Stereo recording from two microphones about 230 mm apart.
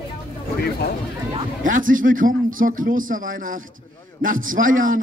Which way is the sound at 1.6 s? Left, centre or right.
Right.